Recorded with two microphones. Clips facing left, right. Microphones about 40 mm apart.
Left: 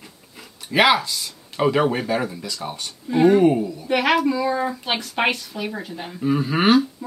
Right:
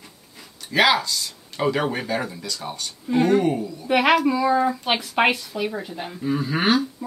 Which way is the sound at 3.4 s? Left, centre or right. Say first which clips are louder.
Left 6 dB; left.